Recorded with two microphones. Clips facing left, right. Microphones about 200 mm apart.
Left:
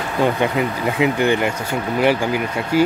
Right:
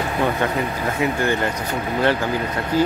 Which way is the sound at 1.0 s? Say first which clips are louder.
Left 4 dB; 15° left (ahead or behind).